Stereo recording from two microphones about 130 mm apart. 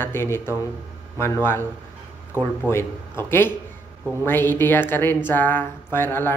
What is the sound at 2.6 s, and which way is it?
Speech, 20° left (ahead or behind).